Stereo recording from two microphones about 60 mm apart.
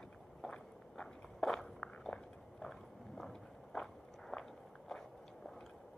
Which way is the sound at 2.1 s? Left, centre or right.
Left.